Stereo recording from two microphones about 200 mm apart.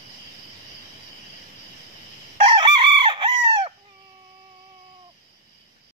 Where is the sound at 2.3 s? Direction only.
25° right (ahead or behind).